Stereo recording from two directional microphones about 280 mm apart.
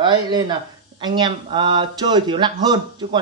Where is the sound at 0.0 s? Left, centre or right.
Centre.